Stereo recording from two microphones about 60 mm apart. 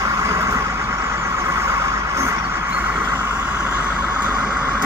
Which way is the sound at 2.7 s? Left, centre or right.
Right.